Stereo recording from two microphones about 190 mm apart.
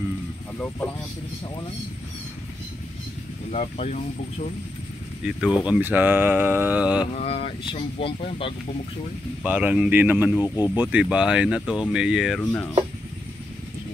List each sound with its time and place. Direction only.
3.5 s speech: 35° left (ahead or behind)
5.2 s speech: 5° right (ahead or behind)
7.2 s speech: 35° left (ahead or behind)
9.4 s speech: 5° right (ahead or behind)
10.4 s speech: 15° left (ahead or behind)
10.8 s speech: 5° right (ahead or behind)
12.4 s speech: 10° left (ahead or behind)